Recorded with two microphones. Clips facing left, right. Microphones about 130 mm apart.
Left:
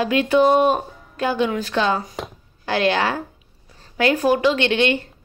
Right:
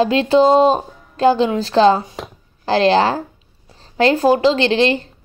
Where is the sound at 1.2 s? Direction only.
30° right (ahead or behind).